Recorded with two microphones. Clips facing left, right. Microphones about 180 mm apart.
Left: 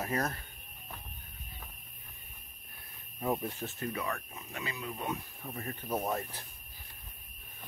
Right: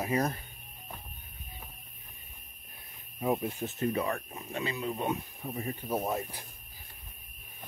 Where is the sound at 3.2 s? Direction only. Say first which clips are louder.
Right 3 dB; 10° right (ahead or behind).